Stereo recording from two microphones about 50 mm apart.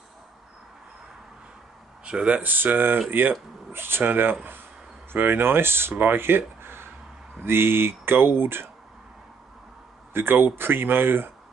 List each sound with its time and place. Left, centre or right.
2.0 s speech: right
2.4 s speech: right
10.1 s speech: right